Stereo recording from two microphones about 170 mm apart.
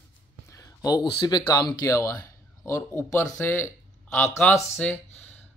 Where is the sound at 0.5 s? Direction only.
20° left (ahead or behind).